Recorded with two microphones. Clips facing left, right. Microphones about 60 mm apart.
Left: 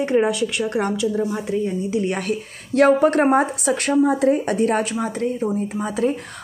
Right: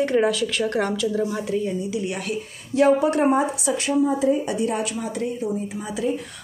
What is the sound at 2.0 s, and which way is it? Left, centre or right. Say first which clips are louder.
A woman's voice: left 4 dB; left.